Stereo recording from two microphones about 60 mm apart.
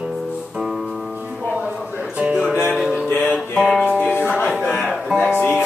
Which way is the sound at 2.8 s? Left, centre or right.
Centre.